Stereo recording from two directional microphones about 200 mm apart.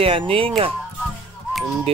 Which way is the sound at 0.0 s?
30° right (ahead or behind).